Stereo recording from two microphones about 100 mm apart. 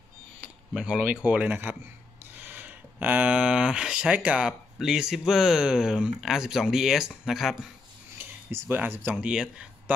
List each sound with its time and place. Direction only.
0.4 s speech: 10° right (ahead or behind)
8.2 s speech: 20° right (ahead or behind)
9.1 s speech: 10° right (ahead or behind)